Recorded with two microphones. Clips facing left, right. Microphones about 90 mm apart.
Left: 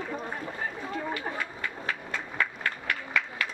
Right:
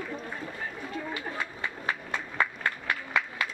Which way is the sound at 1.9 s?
20° right (ahead or behind).